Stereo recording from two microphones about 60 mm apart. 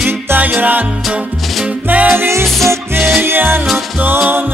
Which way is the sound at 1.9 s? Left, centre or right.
Right.